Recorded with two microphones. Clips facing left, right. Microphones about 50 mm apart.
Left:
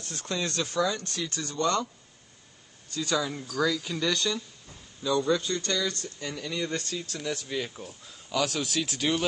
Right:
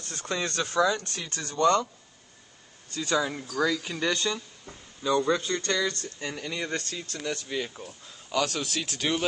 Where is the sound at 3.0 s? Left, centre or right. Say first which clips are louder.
Right 2 dB; right.